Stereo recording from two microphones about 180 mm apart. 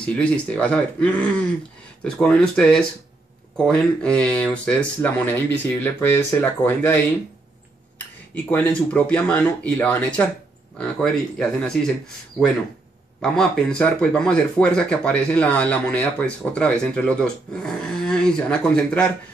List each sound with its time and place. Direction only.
0.0 s speech: 5° left (ahead or behind)
8.5 s speech: 10° left (ahead or behind)